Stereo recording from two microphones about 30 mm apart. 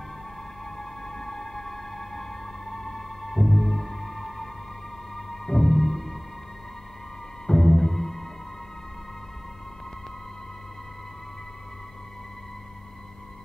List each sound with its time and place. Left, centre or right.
0.7 s music: left
7.4 s music: centre